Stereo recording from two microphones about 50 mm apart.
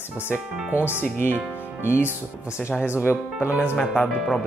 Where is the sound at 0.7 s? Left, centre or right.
Right.